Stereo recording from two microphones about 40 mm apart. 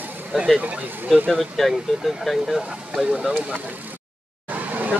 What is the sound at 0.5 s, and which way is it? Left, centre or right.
Speech, right.